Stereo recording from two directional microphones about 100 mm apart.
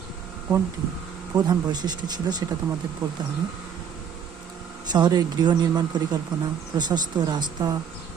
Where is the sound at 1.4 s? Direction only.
45° right (ahead or behind).